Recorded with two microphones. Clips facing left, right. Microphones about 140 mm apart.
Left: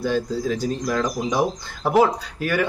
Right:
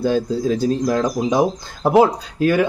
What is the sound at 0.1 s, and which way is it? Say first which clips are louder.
Speech: right 4 dB; 30° right (ahead or behind).